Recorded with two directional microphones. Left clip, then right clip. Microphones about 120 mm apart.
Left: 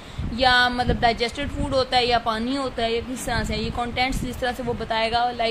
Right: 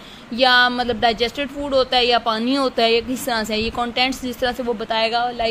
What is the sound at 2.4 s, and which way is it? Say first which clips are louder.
Speech: right 7 dB; 60° right (ahead or behind).